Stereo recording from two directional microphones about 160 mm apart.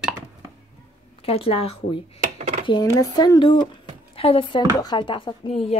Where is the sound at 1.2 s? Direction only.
35° left (ahead or behind).